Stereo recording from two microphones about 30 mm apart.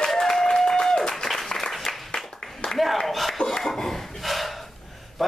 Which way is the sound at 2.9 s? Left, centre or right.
Centre.